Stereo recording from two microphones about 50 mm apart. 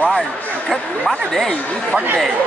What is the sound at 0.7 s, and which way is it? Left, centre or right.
Speech, centre.